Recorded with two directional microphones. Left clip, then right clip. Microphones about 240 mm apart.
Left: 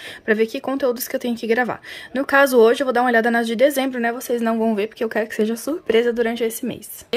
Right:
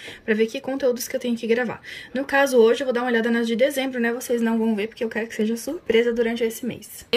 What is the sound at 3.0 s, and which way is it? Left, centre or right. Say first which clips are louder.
A woman's voice: left 5 dB; centre.